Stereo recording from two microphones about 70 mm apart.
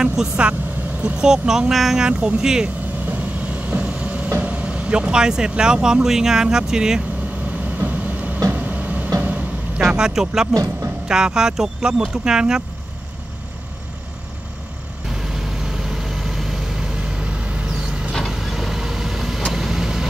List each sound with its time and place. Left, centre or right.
0.0 s speech: centre
2.0 s speech: centre
3.1 s vehicle: right
4.4 s speech: centre
7.8 s train: right
8.5 s vehicle: right
9.8 s speech: centre
10.5 s speech: right
11.1 s speech: centre
15.1 s vehicle: centre